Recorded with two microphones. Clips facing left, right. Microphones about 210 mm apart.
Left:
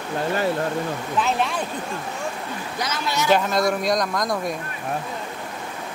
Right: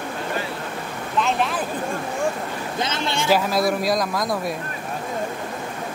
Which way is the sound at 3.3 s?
5° right (ahead or behind).